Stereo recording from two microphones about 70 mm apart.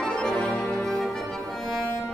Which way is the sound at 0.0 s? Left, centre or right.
Centre.